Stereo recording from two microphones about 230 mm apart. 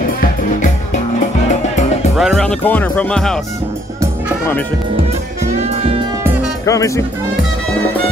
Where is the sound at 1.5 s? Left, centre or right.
Left.